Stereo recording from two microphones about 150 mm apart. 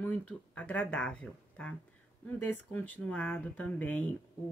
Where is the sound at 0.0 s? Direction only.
10° left (ahead or behind).